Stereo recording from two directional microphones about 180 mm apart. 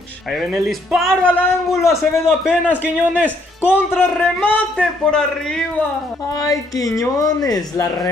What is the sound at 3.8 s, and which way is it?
A man's voice, 15° left (ahead or behind).